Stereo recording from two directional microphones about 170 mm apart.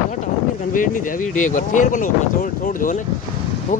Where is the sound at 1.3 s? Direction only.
50° left (ahead or behind).